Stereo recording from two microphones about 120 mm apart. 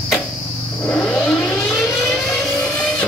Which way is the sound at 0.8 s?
5° left (ahead or behind).